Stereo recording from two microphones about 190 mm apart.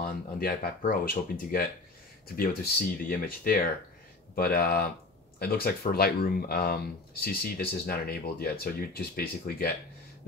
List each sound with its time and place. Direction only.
0.0 s speech: 50° left (ahead or behind)